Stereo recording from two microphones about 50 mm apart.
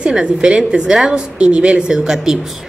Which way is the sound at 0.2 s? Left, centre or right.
Centre.